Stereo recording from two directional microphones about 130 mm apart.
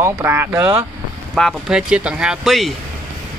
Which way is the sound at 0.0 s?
20° right (ahead or behind).